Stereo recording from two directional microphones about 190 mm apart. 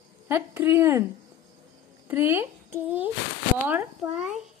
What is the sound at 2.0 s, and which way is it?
Speech, 10° right (ahead or behind).